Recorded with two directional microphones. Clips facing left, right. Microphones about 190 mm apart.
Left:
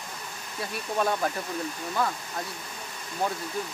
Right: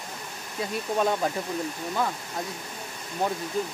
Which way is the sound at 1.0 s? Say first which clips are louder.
Right 1 dB; 15° right (ahead or behind).